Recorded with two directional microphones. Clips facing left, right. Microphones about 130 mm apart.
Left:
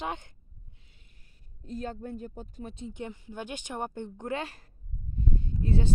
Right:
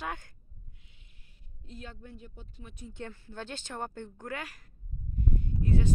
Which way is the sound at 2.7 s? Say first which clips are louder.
Left 1 dB; 20° left (ahead or behind).